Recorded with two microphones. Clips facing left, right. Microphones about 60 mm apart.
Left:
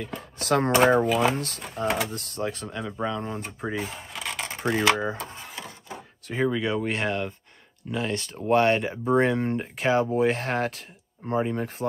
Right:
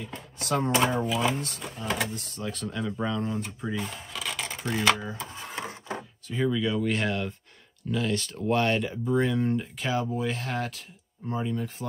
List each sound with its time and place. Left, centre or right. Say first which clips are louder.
0.0 s speech: left 4 dB; left
2.6 s speech: even; centre
3.3 s speech: even; left
4.1 s a sound: left 1 dB; left
4.9 s speech: left 6 dB; left
5.6 s a sound: right 6 dB; right
6.4 s speech: left 1 dB; left
7.1 s speech: left 2 dB; centre; by 11.7 s left